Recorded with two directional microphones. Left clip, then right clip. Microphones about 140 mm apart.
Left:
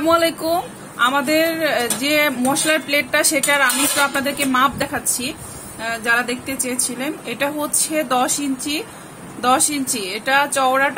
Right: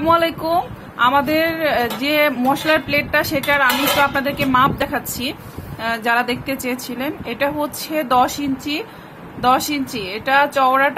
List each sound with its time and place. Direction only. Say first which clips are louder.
0.0 s speech: even; 5° right (ahead or behind)